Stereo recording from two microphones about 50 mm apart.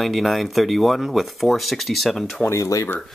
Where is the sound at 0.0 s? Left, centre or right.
Centre.